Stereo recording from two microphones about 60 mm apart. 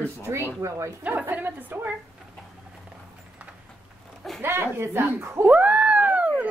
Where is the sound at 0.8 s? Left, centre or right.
Right.